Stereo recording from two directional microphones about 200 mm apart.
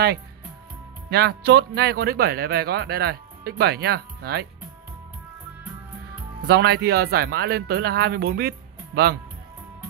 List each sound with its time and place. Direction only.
1.1 s speech: 55° right (ahead or behind)
6.4 s speech: 55° right (ahead or behind)